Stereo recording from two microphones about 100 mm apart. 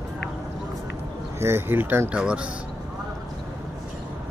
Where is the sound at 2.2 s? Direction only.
10° right (ahead or behind).